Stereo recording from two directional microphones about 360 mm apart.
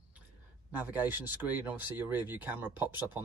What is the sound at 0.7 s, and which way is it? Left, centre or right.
Speech, centre.